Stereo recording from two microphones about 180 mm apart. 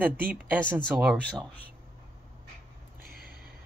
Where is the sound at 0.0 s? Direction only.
10° right (ahead or behind).